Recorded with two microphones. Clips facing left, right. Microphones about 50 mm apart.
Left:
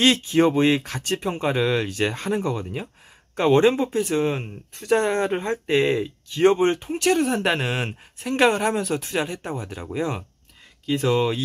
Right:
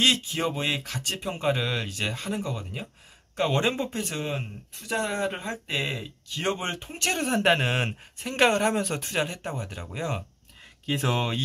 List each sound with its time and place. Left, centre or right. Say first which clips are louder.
0.0 s speech: left 7 dB; left
1.9 s speech: left 7 dB; left
4.8 s speech: left 7 dB; left; by 7.2 s centre
7.2 s speech: left 1 dB; centre
8.3 s speech: left 3 dB; centre
9.3 s speech: left 4 dB; centre
10.9 s speech: left 5 dB; centre
11.1 s speech: left 6 dB; centre